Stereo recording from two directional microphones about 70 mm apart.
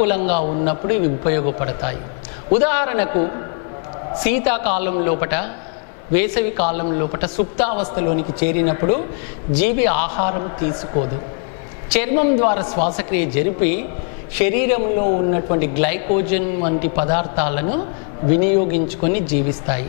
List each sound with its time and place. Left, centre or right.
0.0 s speech: centre